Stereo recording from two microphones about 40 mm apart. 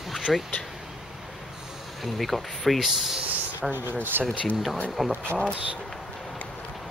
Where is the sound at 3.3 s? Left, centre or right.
Right.